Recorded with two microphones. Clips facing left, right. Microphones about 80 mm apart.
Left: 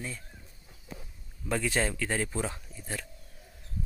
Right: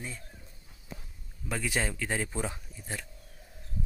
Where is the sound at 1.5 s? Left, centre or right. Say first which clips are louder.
Left 3 dB; centre.